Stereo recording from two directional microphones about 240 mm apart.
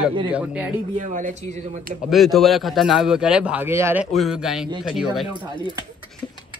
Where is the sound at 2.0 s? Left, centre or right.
Centre.